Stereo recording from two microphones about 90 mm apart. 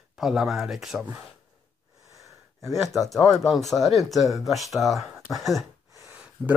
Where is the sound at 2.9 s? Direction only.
Centre (ahead or behind).